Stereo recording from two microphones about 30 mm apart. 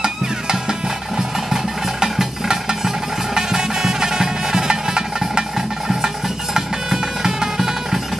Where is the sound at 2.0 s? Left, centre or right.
Centre.